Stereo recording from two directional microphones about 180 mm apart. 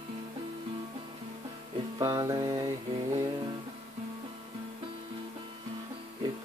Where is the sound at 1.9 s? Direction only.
20° right (ahead or behind).